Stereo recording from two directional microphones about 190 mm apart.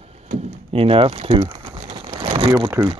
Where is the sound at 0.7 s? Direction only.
30° right (ahead or behind).